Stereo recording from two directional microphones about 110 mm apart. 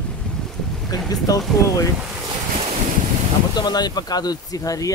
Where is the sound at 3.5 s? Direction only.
40° left (ahead or behind).